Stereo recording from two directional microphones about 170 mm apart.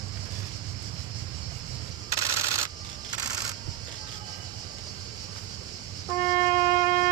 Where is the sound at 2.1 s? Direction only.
20° right (ahead or behind).